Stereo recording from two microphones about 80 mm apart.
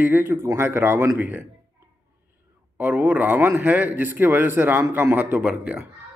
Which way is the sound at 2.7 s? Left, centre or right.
Right.